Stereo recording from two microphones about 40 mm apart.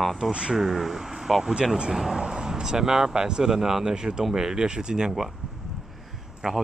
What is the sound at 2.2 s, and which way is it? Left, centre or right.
Speech, centre.